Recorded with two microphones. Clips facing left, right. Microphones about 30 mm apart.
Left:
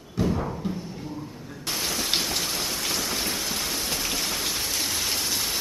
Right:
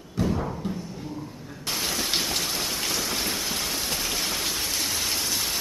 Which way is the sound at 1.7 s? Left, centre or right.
Centre.